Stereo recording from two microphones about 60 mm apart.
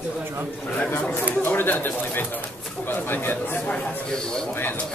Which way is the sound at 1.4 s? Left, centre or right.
Left.